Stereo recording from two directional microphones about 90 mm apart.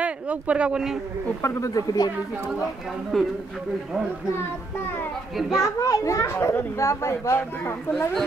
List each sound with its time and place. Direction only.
0.0 s speech: 15° right (ahead or behind)
1.4 s a man's voice: 35° left (ahead or behind)
3.1 s a child's voice: centre (ahead or behind)
5.4 s a child's voice: 5° right (ahead or behind)
5.8 s a man's voice: 35° left (ahead or behind)